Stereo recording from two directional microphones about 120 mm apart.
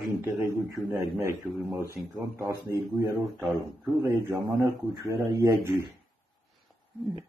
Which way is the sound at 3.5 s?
20° right (ahead or behind).